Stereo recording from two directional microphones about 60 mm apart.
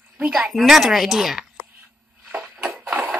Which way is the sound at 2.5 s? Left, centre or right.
Centre.